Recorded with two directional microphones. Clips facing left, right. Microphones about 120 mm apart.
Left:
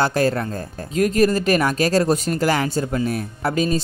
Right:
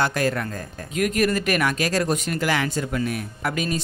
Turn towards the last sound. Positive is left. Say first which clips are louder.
# left 5 dB
turn(degrees=30)  # may be behind; listen again after turning